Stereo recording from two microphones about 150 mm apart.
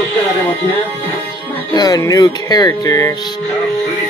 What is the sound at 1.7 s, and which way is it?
Speech, 25° left (ahead or behind).